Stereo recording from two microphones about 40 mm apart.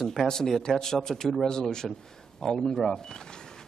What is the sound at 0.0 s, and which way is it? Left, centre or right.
A man's voice, centre.